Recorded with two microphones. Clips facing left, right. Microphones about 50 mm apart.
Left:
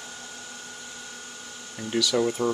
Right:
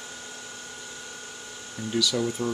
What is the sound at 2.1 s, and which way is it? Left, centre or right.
Speech, left.